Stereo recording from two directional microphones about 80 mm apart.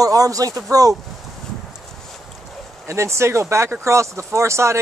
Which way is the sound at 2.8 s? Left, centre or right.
Right.